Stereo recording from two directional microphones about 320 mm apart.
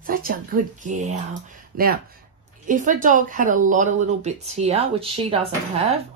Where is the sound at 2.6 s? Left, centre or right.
Right.